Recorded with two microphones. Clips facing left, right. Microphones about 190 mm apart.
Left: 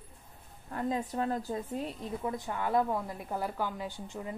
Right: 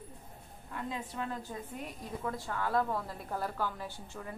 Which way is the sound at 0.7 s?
40° left (ahead or behind).